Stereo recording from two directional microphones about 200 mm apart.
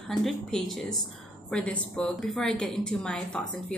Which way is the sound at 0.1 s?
Centre (ahead or behind).